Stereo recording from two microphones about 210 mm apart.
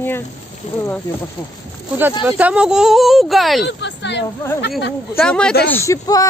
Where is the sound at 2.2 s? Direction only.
5° right (ahead or behind).